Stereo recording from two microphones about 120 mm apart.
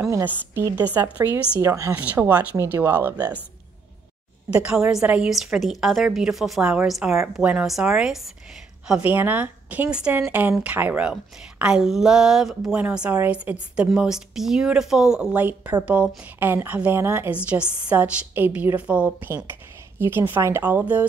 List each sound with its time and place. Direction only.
0.2 s a woman's voice: 15° right (ahead or behind)
4.5 s a woman's voice: 10° right (ahead or behind)